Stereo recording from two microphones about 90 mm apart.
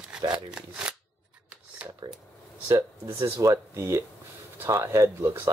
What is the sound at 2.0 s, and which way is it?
Speech, 55° right (ahead or behind).